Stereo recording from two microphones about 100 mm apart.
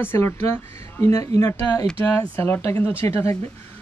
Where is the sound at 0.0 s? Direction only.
25° left (ahead or behind).